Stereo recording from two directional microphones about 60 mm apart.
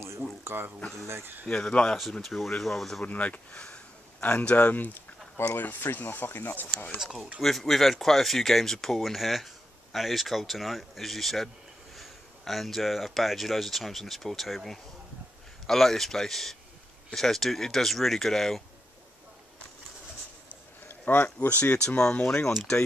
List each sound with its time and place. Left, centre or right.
0.4 s speech: right
1.4 s speech: centre
2.2 s speech: centre
3.0 s speech: left
7.0 s speech: centre
20.9 s speech: left
21.8 s speech: centre